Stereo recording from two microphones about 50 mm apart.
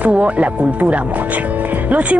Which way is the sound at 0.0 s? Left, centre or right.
Right.